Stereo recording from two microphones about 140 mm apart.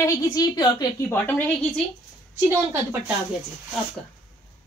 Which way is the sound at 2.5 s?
15° right (ahead or behind).